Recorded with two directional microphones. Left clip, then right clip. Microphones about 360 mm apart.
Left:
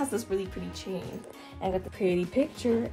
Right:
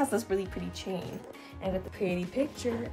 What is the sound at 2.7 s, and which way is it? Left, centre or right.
Speech, centre.